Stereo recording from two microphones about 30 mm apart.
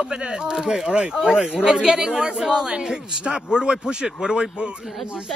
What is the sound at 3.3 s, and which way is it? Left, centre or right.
Speech, right.